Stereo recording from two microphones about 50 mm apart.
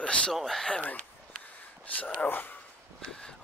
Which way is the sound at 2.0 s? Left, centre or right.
Left.